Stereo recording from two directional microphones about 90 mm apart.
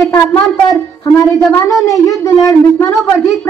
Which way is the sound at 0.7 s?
40° left (ahead or behind).